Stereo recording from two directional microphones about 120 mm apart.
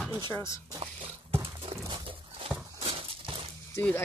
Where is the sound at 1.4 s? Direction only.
50° right (ahead or behind).